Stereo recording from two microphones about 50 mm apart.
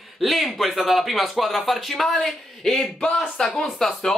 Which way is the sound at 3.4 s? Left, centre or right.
Centre.